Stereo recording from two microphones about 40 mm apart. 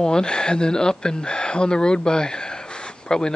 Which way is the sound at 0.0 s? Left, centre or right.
Centre.